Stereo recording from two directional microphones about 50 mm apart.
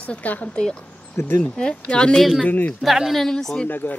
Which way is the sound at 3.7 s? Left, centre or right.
Left.